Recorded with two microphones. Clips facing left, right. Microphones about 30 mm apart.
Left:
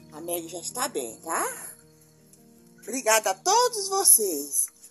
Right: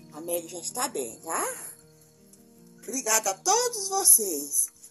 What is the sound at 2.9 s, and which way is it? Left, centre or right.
Speech, left.